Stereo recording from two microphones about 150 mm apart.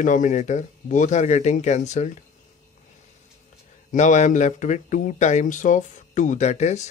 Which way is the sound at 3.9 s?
55° left (ahead or behind).